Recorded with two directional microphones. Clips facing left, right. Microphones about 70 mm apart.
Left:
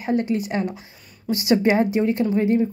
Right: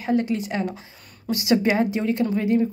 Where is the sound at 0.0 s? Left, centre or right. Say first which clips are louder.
Left 1 dB; left.